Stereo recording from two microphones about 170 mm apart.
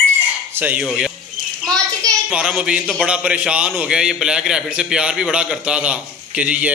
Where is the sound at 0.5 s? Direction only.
10° right (ahead or behind).